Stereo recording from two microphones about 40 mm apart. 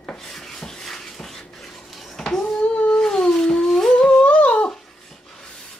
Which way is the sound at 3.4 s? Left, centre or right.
Centre.